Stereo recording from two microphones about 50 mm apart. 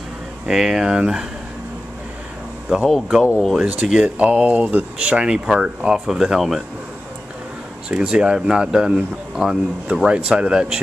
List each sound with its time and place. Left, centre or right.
0.5 s speech: centre
2.9 s speech: centre
3.8 s speech: right
7.9 s speech: centre